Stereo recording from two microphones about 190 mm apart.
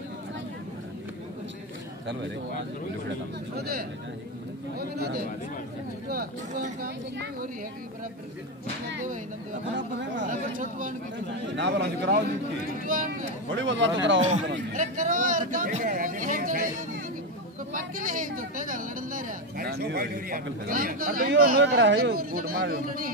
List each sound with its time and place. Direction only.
3.1 s speech: 55° right (ahead or behind)
9.0 s speech: 45° right (ahead or behind)
9.8 s speech: 70° right (ahead or behind)
10.6 s speech: 45° right (ahead or behind)
11.5 s speech: 70° right (ahead or behind)
12.8 s speech: 45° right (ahead or behind)
13.5 s speech: 75° right (ahead or behind)
14.7 s speech: 45° right (ahead or behind)
17.7 s a sound: 45° right (ahead or behind)
20.6 s speech: 45° right (ahead or behind)
21.5 s speech: 60° right (ahead or behind)